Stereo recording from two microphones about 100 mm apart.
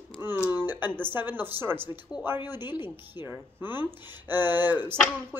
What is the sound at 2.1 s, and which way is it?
Speech, 5° right (ahead or behind).